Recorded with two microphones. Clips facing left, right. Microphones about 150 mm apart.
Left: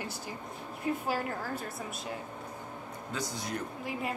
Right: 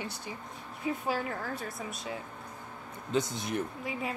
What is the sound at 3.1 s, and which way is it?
Speech, 20° right (ahead or behind).